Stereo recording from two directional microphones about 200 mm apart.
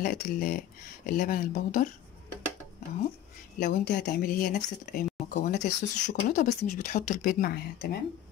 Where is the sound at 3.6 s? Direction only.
45° left (ahead or behind).